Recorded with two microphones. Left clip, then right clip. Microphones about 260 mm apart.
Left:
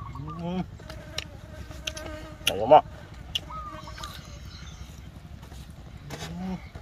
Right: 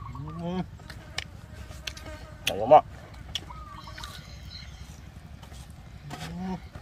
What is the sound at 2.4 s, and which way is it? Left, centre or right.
Insect, centre.